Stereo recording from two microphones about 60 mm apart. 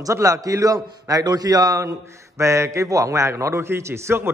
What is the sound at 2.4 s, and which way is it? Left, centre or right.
A man's voice, right.